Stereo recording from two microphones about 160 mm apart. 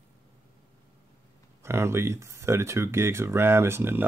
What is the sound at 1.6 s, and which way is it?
Speech, 15° right (ahead or behind).